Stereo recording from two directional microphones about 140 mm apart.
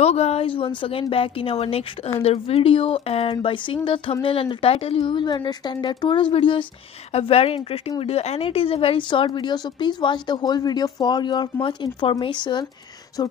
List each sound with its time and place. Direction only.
0.0 s speech: 50° left (ahead or behind)